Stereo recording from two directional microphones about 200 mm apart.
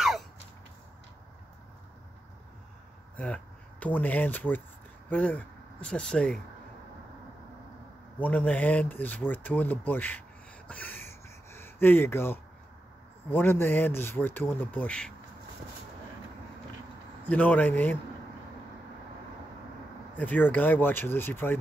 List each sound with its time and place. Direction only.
3.8 s speech: 10° left (ahead or behind)
8.2 s speech: 5° left (ahead or behind)
10.7 s a sound: 10° left (ahead or behind)
13.3 s speech: 10° left (ahead or behind)
17.3 s speech: 10° left (ahead or behind)
20.2 s speech: 10° left (ahead or behind)